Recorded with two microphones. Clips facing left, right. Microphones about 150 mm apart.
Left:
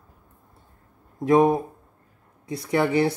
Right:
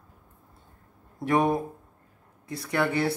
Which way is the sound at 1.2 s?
20° left (ahead or behind).